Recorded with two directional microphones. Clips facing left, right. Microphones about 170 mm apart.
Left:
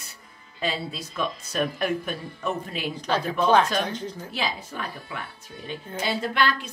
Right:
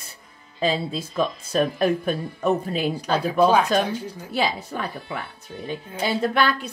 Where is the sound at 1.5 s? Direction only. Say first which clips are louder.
Right 6 dB; 35° right (ahead or behind).